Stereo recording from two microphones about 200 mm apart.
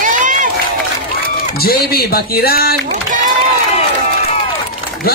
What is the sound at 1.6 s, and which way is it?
A man's voice, 50° left (ahead or behind).